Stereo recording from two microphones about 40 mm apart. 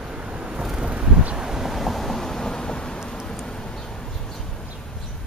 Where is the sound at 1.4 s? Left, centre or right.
Centre.